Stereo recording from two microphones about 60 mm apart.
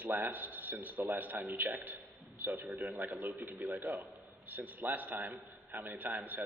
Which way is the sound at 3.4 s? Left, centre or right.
Right.